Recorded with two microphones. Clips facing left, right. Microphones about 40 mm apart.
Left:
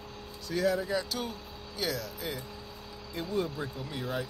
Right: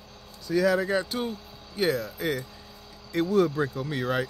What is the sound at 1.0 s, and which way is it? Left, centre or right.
Speech, right.